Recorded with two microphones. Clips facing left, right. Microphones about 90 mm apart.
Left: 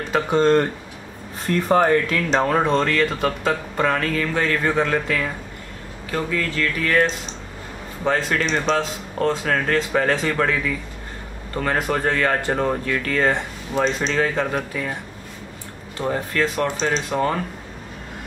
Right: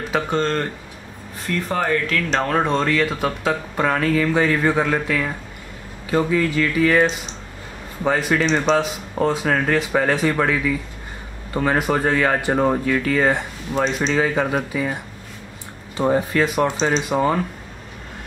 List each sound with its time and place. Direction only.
0.3 s speech: 15° left (ahead or behind)
1.7 s speech: 25° left (ahead or behind)
2.3 s speech: 10° left (ahead or behind)
2.7 s speech: 5° right (ahead or behind)
16.0 s speech: 15° right (ahead or behind)